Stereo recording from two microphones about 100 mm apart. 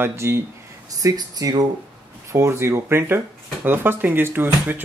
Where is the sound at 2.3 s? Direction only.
25° right (ahead or behind).